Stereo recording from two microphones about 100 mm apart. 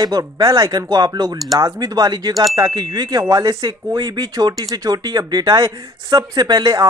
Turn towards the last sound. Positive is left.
turn(degrees=-45)  # may be behind; listen again after turning